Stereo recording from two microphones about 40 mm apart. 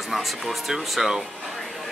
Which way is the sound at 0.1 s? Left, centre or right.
Centre.